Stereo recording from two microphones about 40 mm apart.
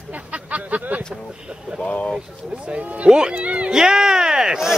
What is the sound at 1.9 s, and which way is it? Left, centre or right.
Speech, left.